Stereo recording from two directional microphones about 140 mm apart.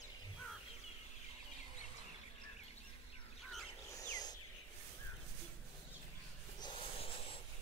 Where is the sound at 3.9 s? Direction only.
25° left (ahead or behind).